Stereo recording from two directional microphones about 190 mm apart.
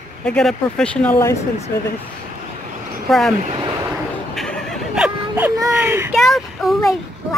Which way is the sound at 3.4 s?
25° right (ahead or behind).